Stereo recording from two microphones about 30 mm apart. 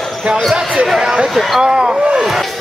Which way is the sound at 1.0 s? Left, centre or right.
Right.